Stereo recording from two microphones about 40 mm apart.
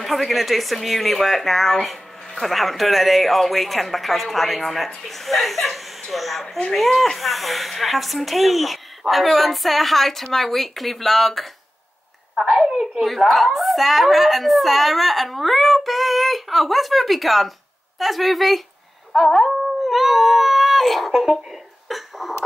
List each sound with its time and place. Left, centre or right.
0.0 s speech: centre
12.4 s a woman's voice: centre
13.0 s speech: centre
19.1 s dog: centre
21.8 s a sound: centre